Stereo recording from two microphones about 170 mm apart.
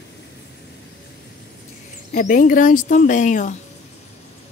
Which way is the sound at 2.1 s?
50° left (ahead or behind).